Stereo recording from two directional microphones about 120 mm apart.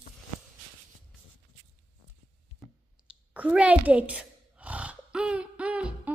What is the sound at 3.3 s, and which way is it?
Sigh, 10° right (ahead or behind).